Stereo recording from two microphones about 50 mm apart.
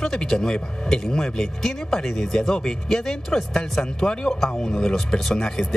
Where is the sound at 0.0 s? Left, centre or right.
Centre.